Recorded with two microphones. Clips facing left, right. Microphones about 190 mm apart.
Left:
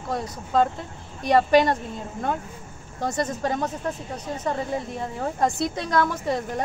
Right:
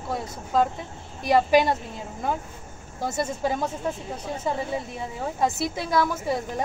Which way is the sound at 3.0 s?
5° right (ahead or behind).